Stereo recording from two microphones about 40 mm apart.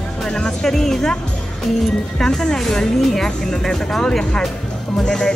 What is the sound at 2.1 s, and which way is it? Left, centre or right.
Speech, centre.